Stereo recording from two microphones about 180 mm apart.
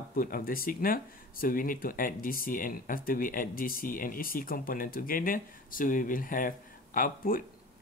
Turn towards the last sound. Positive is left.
turn(degrees=50)  # may be behind; listen again after turning